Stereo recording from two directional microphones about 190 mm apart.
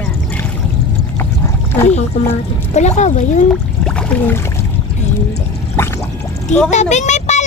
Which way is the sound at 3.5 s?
5° left (ahead or behind).